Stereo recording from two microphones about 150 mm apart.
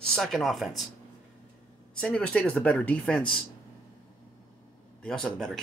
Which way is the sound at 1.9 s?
5° left (ahead or behind).